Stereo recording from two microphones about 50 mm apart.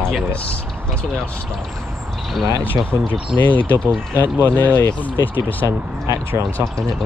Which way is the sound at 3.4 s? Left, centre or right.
Left.